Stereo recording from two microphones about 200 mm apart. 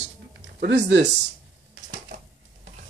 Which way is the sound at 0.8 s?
60° right (ahead or behind).